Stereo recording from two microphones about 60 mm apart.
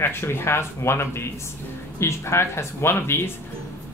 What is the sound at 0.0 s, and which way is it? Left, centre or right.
A woman's voice, left.